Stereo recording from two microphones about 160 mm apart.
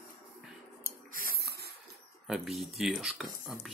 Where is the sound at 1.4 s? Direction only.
90° right.